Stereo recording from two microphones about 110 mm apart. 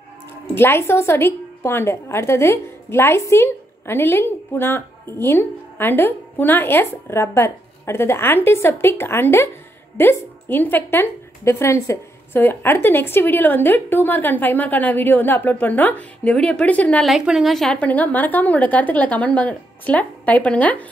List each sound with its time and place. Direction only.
0.6 s a woman's voice: 20° left (ahead or behind)
17.0 s a woman's voice: 5° right (ahead or behind); by 20.8 s 15° left (ahead or behind)